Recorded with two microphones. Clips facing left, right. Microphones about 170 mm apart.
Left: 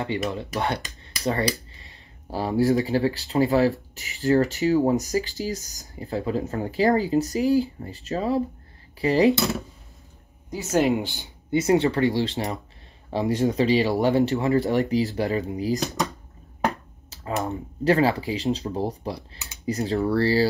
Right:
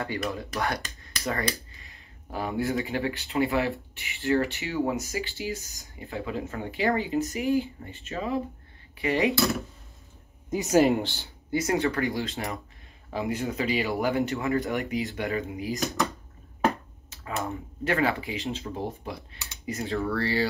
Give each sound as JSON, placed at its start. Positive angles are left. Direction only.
{"t": 0.0, "sound": "speech", "side_deg": 20}
{"t": 2.3, "sound": "speech", "side_deg": 35}
{"t": 10.5, "sound": "speech", "side_deg": -15}
{"t": 11.0, "sound": "speech", "side_deg": 15}
{"t": 11.5, "sound": "speech", "side_deg": 25}
{"t": 17.1, "sound": "speech", "side_deg": 35}